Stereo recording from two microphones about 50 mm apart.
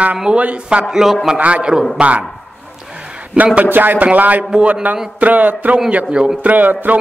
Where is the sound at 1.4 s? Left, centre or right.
Right.